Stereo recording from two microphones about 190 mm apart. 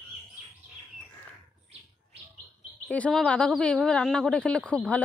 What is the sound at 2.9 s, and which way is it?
A woman's voice, 5° left (ahead or behind).